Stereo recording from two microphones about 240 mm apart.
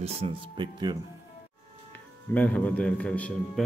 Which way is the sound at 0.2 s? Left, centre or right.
Right.